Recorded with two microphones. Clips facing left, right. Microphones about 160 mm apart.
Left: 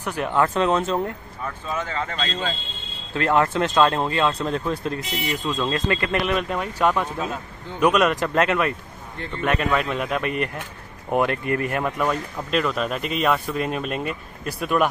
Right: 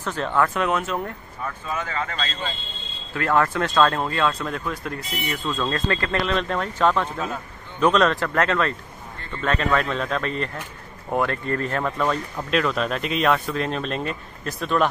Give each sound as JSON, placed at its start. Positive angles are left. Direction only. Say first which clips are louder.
{"t": 0.0, "sound": "speech", "louder": "left 1 dB", "side_deg": 15}
{"t": 0.5, "sound": "speech", "louder": "left 3 dB", "side_deg": 30}
{"t": 3.2, "sound": "speech", "louder": "left 1 dB", "side_deg": 20}
{"t": 5.1, "sound": "speech", "louder": "right 1 dB", "side_deg": 15}